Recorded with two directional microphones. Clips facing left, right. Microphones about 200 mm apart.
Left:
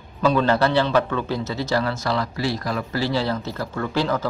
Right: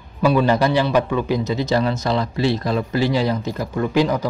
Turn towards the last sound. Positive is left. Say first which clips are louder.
# right 4 dB
turn(degrees=-15)  # may be behind; listen again after turning